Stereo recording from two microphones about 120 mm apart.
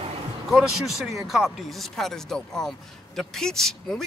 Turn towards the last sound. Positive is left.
turn(degrees=5)  # may be behind; listen again after turning